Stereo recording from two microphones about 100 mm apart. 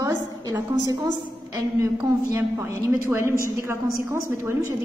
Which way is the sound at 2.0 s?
35° right (ahead or behind).